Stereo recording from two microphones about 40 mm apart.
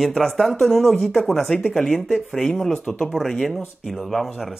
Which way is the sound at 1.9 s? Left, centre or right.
Centre.